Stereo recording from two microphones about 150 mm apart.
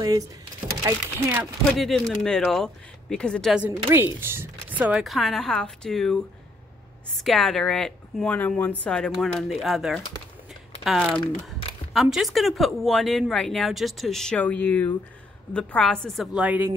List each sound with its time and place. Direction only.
0.0 s speech: 25° right (ahead or behind)
1.4 s speech: centre (ahead or behind)
3.5 s speech: 15° right (ahead or behind)
5.0 s speech: centre (ahead or behind)
7.2 s speech: centre (ahead or behind)